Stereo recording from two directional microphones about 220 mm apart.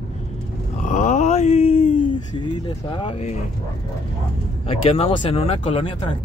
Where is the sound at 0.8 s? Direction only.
35° left (ahead or behind).